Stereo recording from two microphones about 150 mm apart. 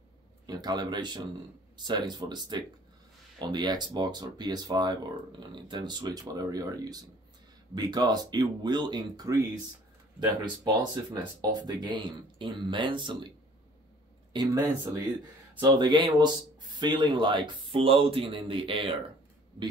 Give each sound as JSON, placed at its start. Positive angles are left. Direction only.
{"t": 0.5, "sound": "a man's voice", "side_deg": -25}
{"t": 14.3, "sound": "a man's voice", "side_deg": -30}